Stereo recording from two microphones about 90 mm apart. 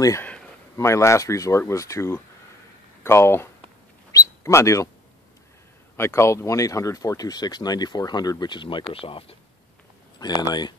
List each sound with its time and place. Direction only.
0.7 s speech: 35° left (ahead or behind)
4.1 s bird: 35° left (ahead or behind)
5.9 s speech: 30° left (ahead or behind); by 8.8 s 65° left (ahead or behind)
8.9 s speech: 90° left
10.4 s speech: 50° left (ahead or behind)